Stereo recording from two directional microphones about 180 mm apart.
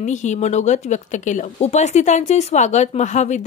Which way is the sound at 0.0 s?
40° left (ahead or behind).